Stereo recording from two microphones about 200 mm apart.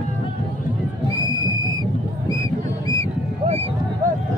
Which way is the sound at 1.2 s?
20° right (ahead or behind).